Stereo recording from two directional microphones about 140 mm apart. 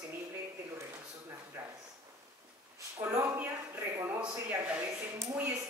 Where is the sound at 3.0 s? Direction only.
20° right (ahead or behind).